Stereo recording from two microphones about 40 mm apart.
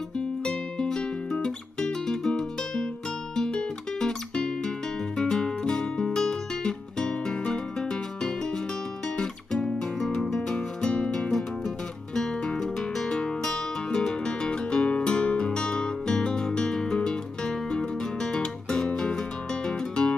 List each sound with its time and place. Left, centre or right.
0.2 s music: left
9.1 s guitar: centre
10.2 s music: centre